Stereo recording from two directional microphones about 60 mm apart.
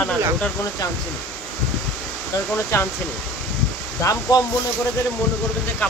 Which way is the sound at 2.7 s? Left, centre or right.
Left.